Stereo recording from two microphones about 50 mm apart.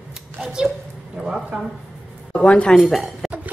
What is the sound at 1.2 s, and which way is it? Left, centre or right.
Speech, centre.